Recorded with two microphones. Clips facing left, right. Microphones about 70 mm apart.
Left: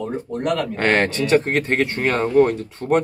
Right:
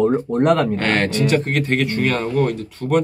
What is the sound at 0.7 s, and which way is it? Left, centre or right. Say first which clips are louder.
Speech: even; left.